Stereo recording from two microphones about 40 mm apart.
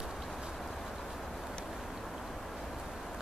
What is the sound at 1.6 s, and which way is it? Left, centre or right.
Vehicle, centre.